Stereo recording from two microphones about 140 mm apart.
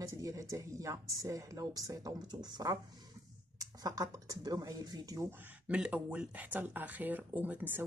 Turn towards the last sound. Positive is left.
turn(degrees=-15)  # may be behind; listen again after turning